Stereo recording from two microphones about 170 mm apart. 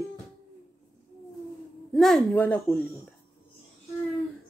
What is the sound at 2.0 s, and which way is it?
Speech, 5° left (ahead or behind).